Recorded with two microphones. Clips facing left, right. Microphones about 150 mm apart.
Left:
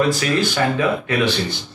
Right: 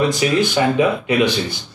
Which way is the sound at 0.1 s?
20° right (ahead or behind).